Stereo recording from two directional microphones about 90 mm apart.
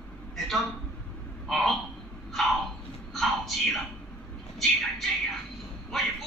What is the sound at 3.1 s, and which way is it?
Speech, centre (ahead or behind).